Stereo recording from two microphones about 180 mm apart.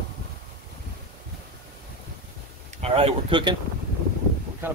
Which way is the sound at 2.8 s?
35° right (ahead or behind).